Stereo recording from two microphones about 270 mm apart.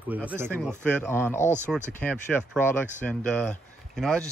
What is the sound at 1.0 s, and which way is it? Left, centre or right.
A man's voice, centre.